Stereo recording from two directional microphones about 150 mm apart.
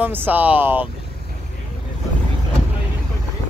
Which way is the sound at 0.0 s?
10° right (ahead or behind).